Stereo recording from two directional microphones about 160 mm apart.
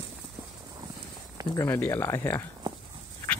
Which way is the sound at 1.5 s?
15° left (ahead or behind).